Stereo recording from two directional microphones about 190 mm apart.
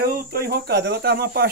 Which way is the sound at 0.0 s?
50° right (ahead or behind).